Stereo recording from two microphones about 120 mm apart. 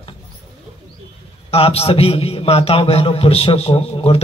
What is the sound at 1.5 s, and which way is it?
A man's voice, 55° left (ahead or behind).